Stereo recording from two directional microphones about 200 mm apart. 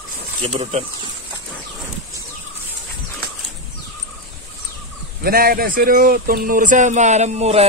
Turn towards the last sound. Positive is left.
turn(degrees=-35)  # may be behind; listen again after turning